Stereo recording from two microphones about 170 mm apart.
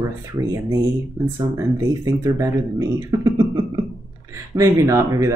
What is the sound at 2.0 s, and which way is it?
Speech, 20° right (ahead or behind).